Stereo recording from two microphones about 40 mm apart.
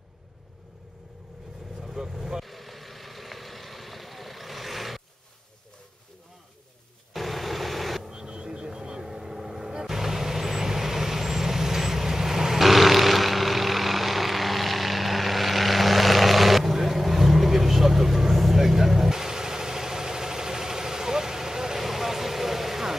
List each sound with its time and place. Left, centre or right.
1.8 s vehicle: centre
7.2 s vehicle: centre
8.1 s vehicle: centre
9.0 s vehicle: centre